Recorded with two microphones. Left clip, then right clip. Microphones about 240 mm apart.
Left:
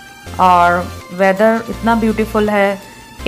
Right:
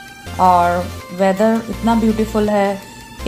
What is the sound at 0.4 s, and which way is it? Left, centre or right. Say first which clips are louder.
Speech: left 2 dB; centre.